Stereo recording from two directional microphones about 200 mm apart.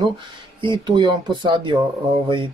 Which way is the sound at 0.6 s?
25° right (ahead or behind).